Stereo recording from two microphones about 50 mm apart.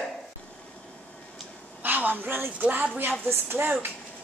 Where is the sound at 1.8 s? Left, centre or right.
Right.